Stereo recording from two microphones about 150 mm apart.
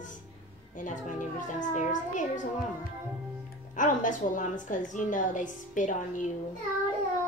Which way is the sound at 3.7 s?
60° left (ahead or behind).